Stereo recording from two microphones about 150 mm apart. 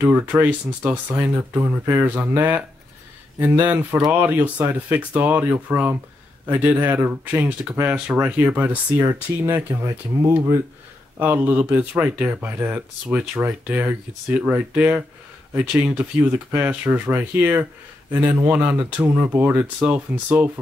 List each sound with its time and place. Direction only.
0.0 s speech: 10° right (ahead or behind)
11.1 s speech: 10° right (ahead or behind)